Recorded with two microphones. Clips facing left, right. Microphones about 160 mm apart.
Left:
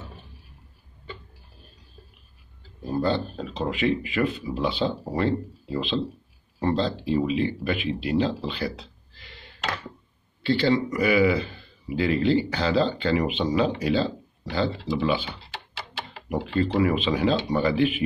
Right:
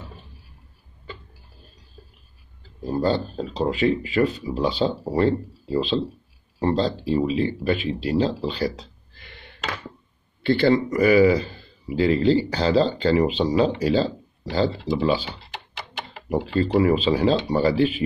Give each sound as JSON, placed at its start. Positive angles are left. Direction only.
{"t": 3.0, "sound": "speech", "side_deg": -35}
{"t": 9.2, "sound": "a sound", "side_deg": -55}
{"t": 10.4, "sound": "speech", "side_deg": -50}